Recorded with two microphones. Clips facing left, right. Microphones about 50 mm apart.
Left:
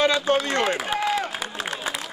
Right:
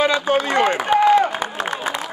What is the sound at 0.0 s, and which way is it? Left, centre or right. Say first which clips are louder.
Run: right 3 dB; centre.